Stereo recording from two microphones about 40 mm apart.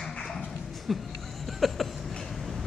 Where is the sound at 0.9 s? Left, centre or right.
Centre.